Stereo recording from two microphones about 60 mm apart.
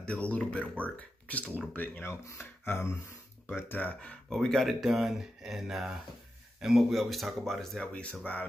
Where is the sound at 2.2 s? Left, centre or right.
Left.